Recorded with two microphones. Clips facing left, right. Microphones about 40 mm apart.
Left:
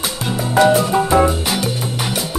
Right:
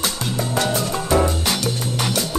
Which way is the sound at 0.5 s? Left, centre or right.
Centre.